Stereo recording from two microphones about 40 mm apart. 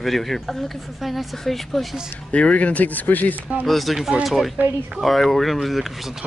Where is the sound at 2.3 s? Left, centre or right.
Left.